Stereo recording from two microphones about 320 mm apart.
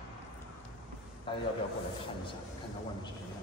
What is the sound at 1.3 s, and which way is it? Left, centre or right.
Speech, centre.